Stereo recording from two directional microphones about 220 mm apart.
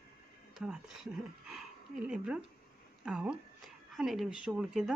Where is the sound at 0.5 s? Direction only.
Centre (ahead or behind).